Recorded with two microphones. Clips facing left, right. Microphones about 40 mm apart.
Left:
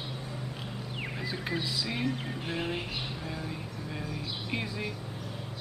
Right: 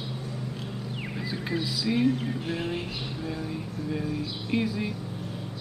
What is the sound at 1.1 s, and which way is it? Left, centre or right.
Speech, centre.